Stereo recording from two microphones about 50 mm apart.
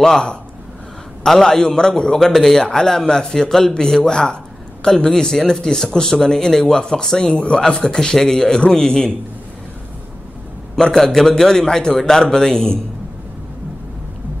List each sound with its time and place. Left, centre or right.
0.0 s speech: centre
10.8 s speech: centre